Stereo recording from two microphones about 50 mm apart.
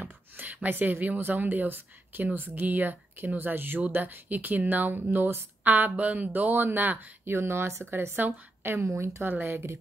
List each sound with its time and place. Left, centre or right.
0.0 s speech: right
7.3 s speech: right
8.8 s speech: right
9.4 s speech: right